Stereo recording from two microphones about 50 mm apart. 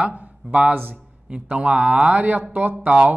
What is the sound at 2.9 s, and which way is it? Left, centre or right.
Speech, right.